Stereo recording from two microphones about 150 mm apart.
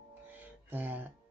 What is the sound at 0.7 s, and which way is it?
Speech, 10° right (ahead or behind).